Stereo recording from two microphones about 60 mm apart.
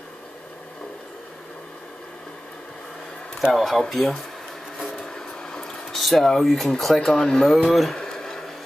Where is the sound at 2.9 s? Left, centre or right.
Centre.